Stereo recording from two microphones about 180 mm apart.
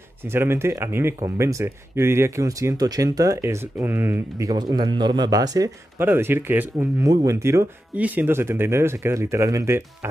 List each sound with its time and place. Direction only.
0.2 s speech: 15° right (ahead or behind)